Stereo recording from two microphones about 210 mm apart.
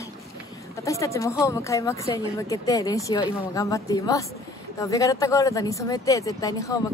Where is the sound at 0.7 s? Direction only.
15° left (ahead or behind).